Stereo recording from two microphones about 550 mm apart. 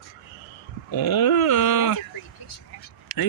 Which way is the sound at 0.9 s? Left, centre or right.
Left.